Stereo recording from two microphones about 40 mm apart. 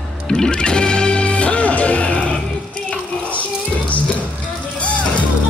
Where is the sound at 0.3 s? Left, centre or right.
Left.